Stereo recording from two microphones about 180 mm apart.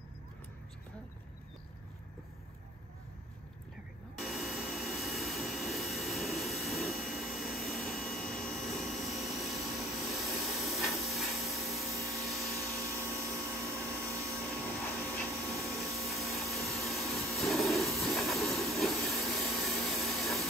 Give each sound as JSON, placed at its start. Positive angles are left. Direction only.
{"t": 4.2, "sound": "jet engine", "side_deg": 0}
{"t": 10.1, "sound": "vacuum cleaner", "side_deg": 0}
{"t": 12.9, "sound": "vacuum cleaner", "side_deg": -15}
{"t": 14.8, "sound": "vacuum cleaner", "side_deg": 0}